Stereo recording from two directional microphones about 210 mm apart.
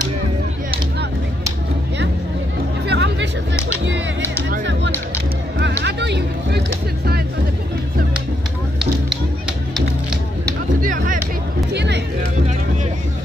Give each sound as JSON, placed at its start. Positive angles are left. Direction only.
{"t": 2.9, "sound": "music", "side_deg": -55}
{"t": 4.5, "sound": "music", "side_deg": -60}
{"t": 5.6, "sound": "hubbub", "side_deg": -55}
{"t": 10.8, "sound": "music", "side_deg": -40}
{"t": 11.7, "sound": "music", "side_deg": -55}